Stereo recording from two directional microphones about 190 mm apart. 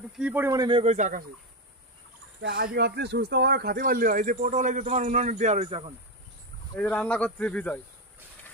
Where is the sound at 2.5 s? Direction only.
55° right (ahead or behind); by 5.8 s 35° right (ahead or behind).